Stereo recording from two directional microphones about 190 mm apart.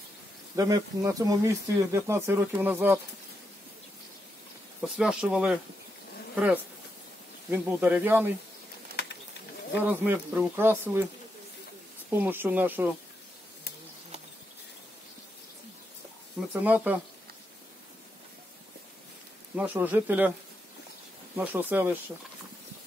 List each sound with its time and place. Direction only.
0.6 s speech: 20° right (ahead or behind)
4.8 s speech: 5° right (ahead or behind)
9.8 s speech: 10° right (ahead or behind)
12.1 s speech: 10° right (ahead or behind)
16.6 s speech: 10° right (ahead or behind)
19.5 s speech: 10° right (ahead or behind)
21.4 s speech: 10° right (ahead or behind)